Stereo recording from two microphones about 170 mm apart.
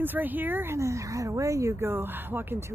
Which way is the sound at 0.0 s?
10° right (ahead or behind).